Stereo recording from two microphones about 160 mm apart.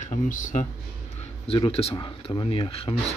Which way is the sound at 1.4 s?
35° left (ahead or behind).